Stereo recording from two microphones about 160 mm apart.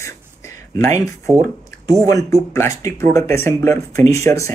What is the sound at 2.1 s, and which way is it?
Speech, 20° left (ahead or behind).